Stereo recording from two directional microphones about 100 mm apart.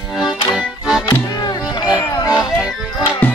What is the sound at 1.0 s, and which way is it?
Music, 45° left (ahead or behind).